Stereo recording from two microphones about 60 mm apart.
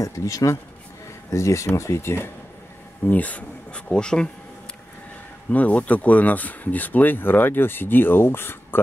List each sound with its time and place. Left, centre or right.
0.0 s speech: left
3.1 s speech: left
3.9 s speech: centre
5.5 s speech: left